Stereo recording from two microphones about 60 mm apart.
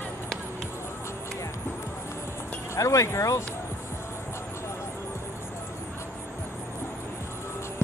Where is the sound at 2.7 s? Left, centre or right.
Left.